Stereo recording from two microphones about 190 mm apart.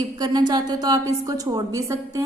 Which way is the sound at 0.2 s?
20° right (ahead or behind).